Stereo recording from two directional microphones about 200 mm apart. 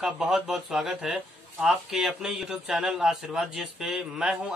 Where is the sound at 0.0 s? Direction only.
5° right (ahead or behind).